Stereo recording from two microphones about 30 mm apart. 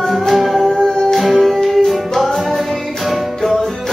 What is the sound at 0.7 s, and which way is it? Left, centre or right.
Music, centre.